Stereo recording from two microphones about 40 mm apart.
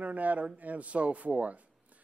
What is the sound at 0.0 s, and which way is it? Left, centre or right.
A man's voice, right.